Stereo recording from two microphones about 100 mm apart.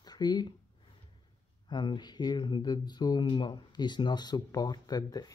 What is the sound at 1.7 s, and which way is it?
Speech, 45° left (ahead or behind).